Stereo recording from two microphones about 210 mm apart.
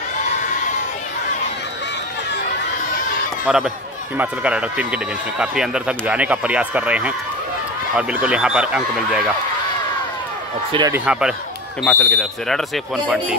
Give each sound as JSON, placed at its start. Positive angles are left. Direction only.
{"t": 3.4, "sound": "speech", "side_deg": -5}
{"t": 10.9, "sound": "speech", "side_deg": -5}